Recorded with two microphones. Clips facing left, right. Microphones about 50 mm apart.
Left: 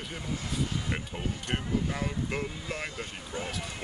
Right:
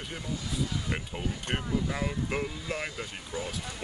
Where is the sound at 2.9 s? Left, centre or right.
Left.